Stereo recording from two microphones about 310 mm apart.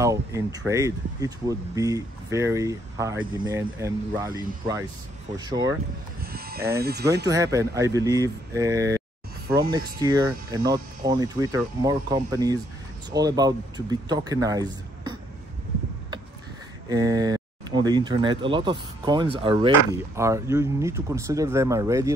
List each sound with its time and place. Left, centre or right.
0.0 s speech: centre
6.2 s a sound: right
6.8 s speech: right
7.2 s speech: centre
16.9 s speech: centre